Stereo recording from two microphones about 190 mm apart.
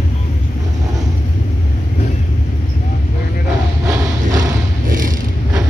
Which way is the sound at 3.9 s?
15° right (ahead or behind).